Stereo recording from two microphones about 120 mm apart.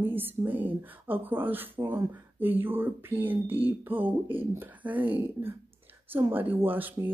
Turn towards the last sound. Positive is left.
turn(degrees=-15)  # may be behind; listen again after turning